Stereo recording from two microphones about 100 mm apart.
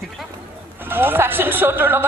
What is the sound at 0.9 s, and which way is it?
A woman's voice, 20° right (ahead or behind).